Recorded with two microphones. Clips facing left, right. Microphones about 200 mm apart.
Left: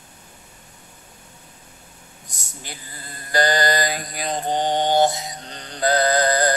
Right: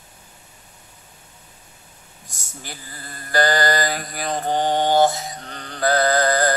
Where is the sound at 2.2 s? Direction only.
20° left (ahead or behind).